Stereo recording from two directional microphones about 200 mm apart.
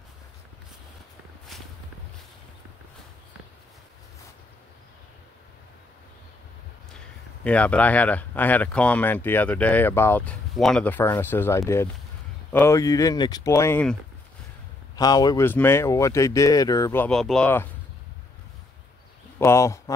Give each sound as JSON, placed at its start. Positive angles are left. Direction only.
{"t": 7.4, "sound": "speech", "side_deg": 5}
{"t": 15.0, "sound": "speech", "side_deg": 20}
{"t": 19.3, "sound": "speech", "side_deg": 15}